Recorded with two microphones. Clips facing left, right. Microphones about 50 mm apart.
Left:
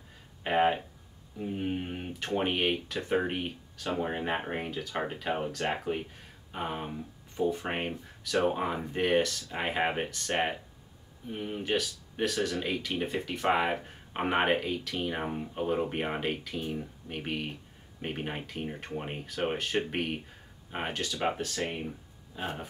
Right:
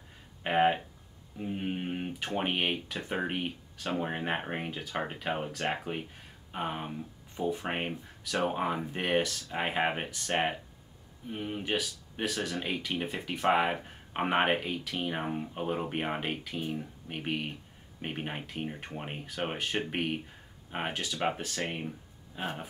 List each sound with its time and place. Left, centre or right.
0.4 s speech: centre
22.3 s speech: centre